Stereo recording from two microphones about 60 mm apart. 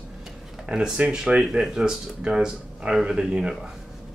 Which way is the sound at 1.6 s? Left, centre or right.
Centre.